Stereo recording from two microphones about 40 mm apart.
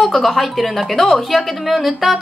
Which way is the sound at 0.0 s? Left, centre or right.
Centre.